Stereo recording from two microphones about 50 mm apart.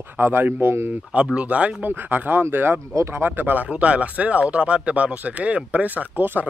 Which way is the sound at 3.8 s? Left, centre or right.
Right.